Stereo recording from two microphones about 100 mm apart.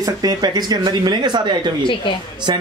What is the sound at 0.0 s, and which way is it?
Speech, 40° right (ahead or behind).